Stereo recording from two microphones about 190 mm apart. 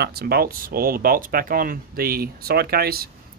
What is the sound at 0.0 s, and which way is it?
Speech, 55° right (ahead or behind).